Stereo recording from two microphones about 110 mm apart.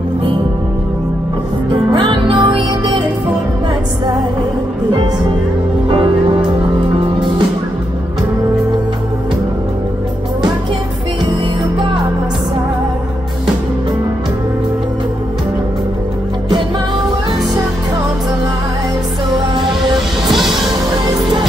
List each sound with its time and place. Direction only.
1.7 s music: 45° right (ahead or behind)
5.9 s music: 50° right (ahead or behind)
20.2 s music: centre (ahead or behind)